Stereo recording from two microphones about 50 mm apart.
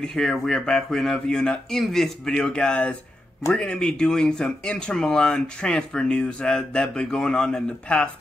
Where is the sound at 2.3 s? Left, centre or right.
Centre.